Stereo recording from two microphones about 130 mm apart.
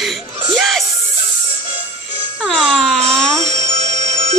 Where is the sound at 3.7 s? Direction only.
55° right (ahead or behind).